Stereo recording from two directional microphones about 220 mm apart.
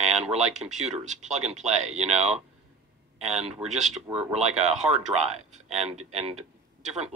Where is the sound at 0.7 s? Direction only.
30° right (ahead or behind).